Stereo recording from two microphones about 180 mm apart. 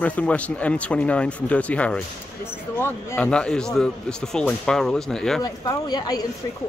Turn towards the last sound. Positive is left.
turn(degrees=20)  # may be behind; listen again after turning